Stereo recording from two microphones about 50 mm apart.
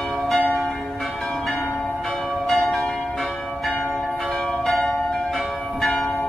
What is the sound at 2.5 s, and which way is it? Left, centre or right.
Change ringing, centre.